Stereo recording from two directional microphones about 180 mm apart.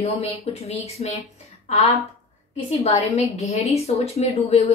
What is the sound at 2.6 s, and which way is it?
Speech, 35° left (ahead or behind).